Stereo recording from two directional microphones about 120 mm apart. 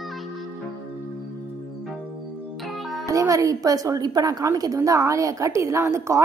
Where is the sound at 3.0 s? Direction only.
30° right (ahead or behind).